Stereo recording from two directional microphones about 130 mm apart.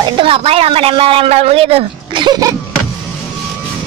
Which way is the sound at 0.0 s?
45° right (ahead or behind).